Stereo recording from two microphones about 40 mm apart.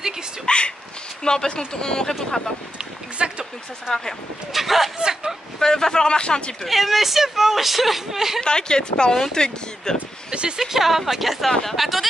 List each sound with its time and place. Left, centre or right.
0.5 s a sound: left
1.2 s speech: centre
2.8 s a sound: right
4.5 s speech: centre
4.9 s a sound: centre
5.6 s speech: centre
6.6 s speech: centre
8.4 s speech: centre
10.3 s speech: right
10.6 s speech: centre